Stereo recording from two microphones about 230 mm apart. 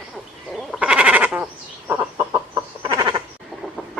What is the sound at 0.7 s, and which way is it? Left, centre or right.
Sheep, centre.